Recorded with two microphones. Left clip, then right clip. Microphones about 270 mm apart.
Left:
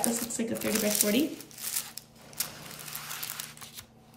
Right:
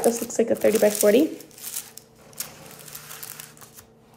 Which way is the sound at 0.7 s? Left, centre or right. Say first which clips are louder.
Right 10 dB; centre.